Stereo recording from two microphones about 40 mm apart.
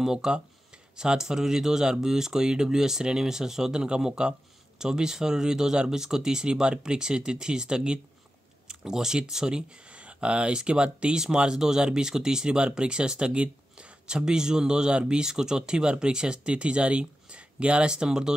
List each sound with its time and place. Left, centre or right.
0.0 s speech: centre